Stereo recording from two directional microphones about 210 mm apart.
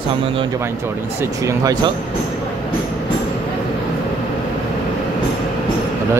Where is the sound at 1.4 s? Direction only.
20° right (ahead or behind).